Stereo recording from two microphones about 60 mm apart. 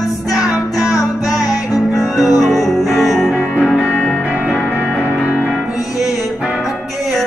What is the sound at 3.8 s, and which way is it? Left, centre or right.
Music, left.